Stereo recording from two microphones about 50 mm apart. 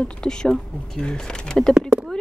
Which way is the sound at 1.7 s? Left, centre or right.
Centre.